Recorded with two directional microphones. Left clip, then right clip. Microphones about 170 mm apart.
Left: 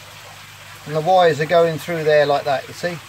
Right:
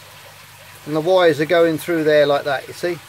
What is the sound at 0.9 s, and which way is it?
Speech, 50° right (ahead or behind).